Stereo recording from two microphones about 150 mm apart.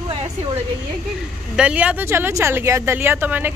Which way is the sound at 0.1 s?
35° right (ahead or behind).